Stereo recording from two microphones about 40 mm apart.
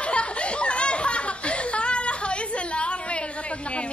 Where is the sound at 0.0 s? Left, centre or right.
Left.